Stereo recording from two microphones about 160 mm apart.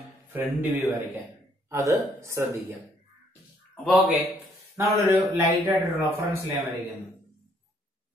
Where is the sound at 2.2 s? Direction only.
15° right (ahead or behind).